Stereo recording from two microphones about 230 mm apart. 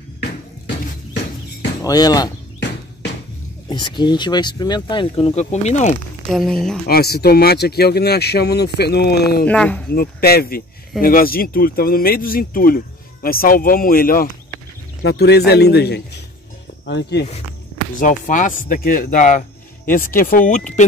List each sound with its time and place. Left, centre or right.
1.8 s speech: centre
3.6 s speech: centre
6.3 s speech: centre
6.9 s speech: left
9.5 s speech: centre
9.9 s speech: left
17.9 s speech: left